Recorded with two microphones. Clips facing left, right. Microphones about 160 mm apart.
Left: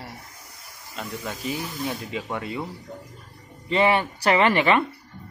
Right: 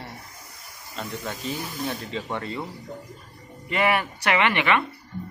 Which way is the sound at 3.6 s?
25° left (ahead or behind).